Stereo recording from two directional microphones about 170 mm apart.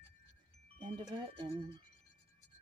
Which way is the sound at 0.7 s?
30° right (ahead or behind).